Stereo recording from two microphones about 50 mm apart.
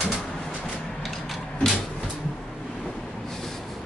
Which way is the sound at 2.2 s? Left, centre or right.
Centre.